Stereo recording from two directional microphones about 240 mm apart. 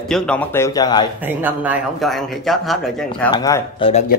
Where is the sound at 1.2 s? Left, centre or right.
Centre.